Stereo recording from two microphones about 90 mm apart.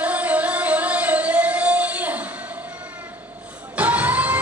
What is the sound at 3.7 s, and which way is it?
Music, 20° right (ahead or behind).